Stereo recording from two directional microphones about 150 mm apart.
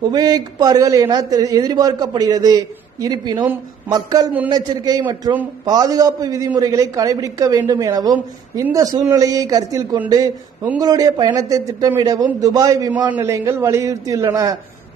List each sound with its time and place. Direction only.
0.0 s a man's voice: 25° right (ahead or behind)